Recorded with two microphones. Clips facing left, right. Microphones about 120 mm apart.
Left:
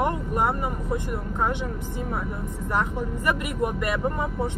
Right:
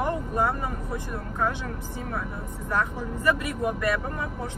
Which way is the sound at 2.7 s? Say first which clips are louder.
Left 1 dB; 20° left (ahead or behind).